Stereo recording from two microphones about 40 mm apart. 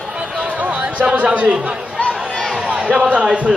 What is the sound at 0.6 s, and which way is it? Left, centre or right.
Speech, right.